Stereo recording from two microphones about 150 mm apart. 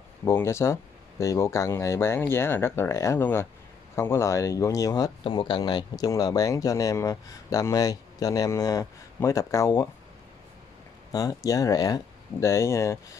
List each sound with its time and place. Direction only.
0.2 s speech: 20° left (ahead or behind)
5.2 s speech: 35° left (ahead or behind)
11.1 s speech: 25° left (ahead or behind)